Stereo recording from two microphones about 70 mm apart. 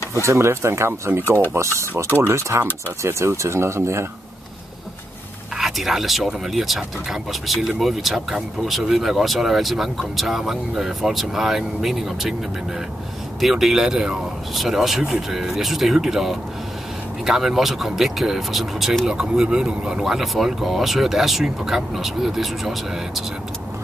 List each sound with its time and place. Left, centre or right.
0.1 s speech: right
5.6 s speech: centre
13.4 s speech: centre